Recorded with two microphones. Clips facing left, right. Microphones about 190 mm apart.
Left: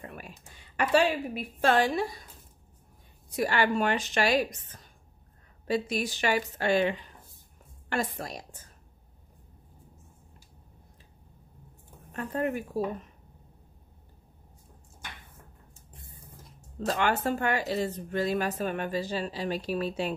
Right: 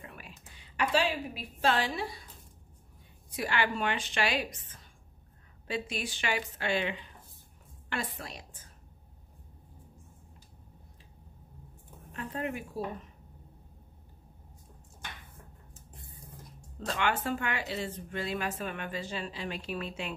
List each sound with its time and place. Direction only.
0.0 s a sound: 45° left (ahead or behind)
3.3 s speech: 40° left (ahead or behind)
12.2 s speech: 45° left (ahead or behind)
15.7 s music: centre (ahead or behind)
16.8 s speech: 40° left (ahead or behind)